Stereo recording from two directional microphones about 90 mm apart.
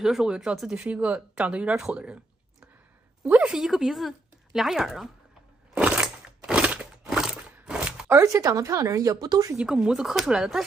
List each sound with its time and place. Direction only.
0.0 s speech: 5° right (ahead or behind)
3.3 s speech: 15° right (ahead or behind)
5.8 s a sound: 10° right (ahead or behind)
7.5 s chopping: 10° right (ahead or behind)
8.1 s speech: 35° right (ahead or behind)
9.6 s speech: 10° right (ahead or behind)